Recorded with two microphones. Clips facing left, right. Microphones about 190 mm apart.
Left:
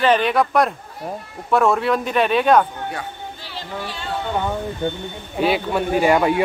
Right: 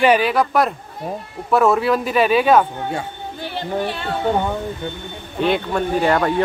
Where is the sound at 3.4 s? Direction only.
55° right (ahead or behind).